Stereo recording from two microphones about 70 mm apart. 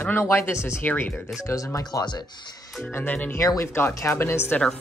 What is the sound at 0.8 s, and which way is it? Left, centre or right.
Speech, left.